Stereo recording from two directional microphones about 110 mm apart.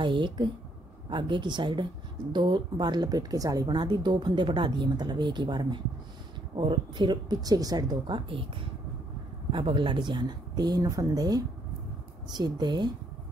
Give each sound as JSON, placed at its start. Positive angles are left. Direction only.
{"t": 0.0, "sound": "speech", "side_deg": -45}
{"t": 9.5, "sound": "speech", "side_deg": -50}